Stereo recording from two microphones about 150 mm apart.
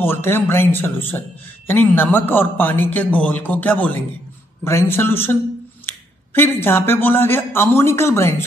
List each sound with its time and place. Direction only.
0.0 s a man's voice: 15° left (ahead or behind)